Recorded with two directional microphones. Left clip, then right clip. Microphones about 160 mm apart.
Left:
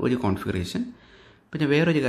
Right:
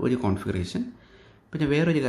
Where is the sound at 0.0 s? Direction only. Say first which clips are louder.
Left 1 dB; 10° left (ahead or behind).